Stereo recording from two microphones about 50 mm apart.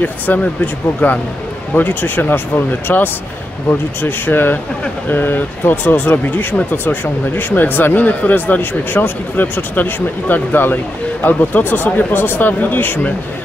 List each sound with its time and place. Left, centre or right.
0.0 s speech: left